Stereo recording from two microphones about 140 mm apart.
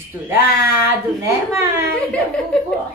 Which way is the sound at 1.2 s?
20° right (ahead or behind).